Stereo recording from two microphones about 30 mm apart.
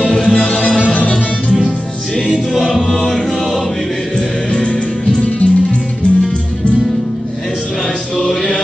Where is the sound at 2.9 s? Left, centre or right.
Centre.